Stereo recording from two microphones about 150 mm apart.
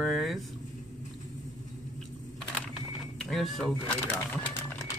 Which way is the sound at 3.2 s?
Centre (ahead or behind).